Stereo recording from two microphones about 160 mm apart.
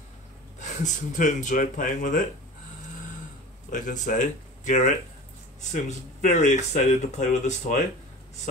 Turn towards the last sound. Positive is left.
turn(degrees=50)  # may be behind; listen again after turning